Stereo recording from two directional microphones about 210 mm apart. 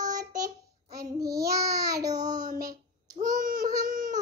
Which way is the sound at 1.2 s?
15° right (ahead or behind).